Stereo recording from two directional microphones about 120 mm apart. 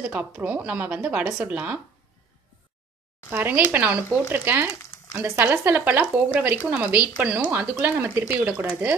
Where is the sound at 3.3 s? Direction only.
15° right (ahead or behind).